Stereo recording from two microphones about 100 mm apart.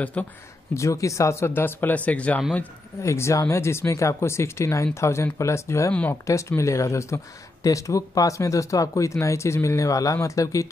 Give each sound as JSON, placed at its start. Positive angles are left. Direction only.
{"t": 0.0, "sound": "speech", "side_deg": 15}
{"t": 0.7, "sound": "speech", "side_deg": 30}
{"t": 3.0, "sound": "speech", "side_deg": 30}